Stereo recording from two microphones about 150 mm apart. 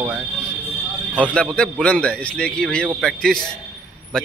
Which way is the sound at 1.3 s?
5° left (ahead or behind).